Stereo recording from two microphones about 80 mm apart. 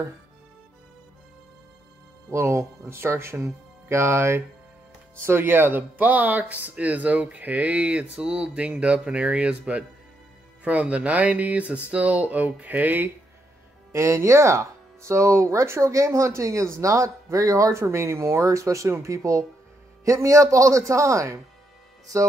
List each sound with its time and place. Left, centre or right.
2.3 s speech: right
13.9 s speech: right